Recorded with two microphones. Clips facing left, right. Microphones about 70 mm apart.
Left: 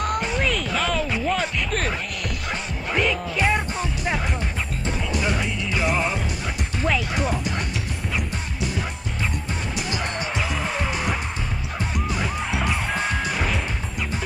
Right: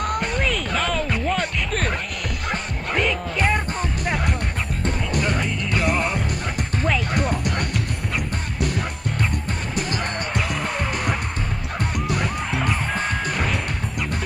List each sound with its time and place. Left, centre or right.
0.0 s music: centre
5.2 s music: centre
8.5 s music: right
10.3 s music: centre
12.2 s music: centre